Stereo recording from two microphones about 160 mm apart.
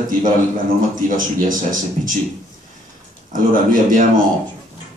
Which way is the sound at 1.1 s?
55° right (ahead or behind).